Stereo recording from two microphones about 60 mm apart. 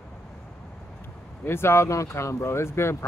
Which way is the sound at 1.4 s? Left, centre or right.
Left.